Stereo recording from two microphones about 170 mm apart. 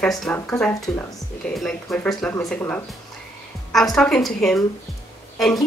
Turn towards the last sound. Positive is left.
turn(degrees=0)  # may be behind; listen again after turning